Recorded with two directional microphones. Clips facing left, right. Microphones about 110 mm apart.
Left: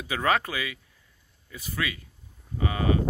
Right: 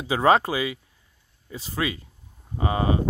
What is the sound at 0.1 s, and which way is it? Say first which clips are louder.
Speech: right 7 dB; 25° right (ahead or behind).